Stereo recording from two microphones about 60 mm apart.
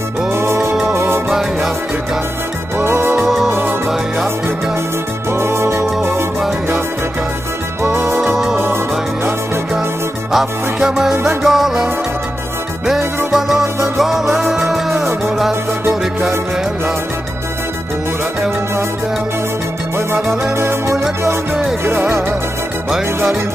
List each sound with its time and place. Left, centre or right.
0.3 s music: right
2.8 s music: right
3.2 s music: centre
5.3 s music: right
7.8 s music: right
10.3 s music: centre
13.3 s music: centre
20.5 s music: right
22.8 s music: centre